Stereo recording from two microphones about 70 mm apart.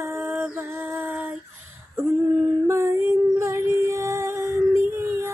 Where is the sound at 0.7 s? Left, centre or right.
Right.